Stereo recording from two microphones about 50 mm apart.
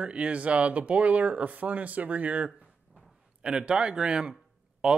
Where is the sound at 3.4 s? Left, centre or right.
Centre.